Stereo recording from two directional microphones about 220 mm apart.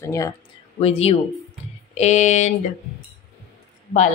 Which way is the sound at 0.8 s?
25° left (ahead or behind).